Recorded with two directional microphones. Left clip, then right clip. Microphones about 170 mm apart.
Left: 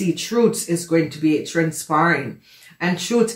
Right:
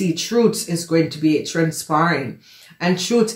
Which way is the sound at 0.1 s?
30° right (ahead or behind).